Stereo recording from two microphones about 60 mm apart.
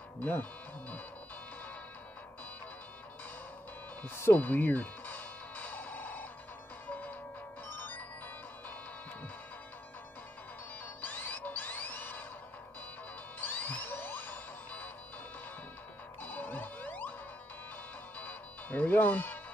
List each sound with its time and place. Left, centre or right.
0.2 s speech: left
4.3 s music: left
11.0 s music: left
13.4 s music: left
16.2 s music: left
18.2 s music: left